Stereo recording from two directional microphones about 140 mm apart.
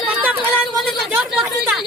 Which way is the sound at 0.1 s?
10° right (ahead or behind).